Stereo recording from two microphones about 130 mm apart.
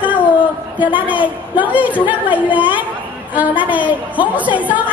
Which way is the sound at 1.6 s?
10° right (ahead or behind).